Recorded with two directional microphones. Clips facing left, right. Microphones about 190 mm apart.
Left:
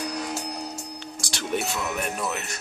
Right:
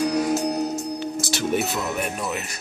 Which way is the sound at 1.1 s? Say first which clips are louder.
Right 4 dB; 5° right (ahead or behind).